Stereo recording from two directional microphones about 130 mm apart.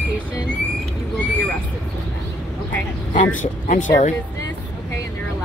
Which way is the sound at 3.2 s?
75° left (ahead or behind).